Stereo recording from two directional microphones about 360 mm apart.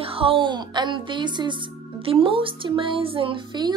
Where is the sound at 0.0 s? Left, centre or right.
Centre.